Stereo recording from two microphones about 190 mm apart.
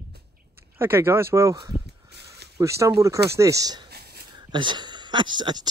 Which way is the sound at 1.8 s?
60° right (ahead or behind).